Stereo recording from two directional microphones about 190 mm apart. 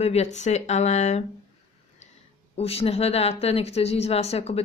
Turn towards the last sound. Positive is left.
turn(degrees=35)  # may be behind; listen again after turning